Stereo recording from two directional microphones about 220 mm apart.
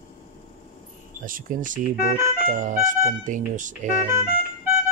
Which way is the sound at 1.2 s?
40° right (ahead or behind).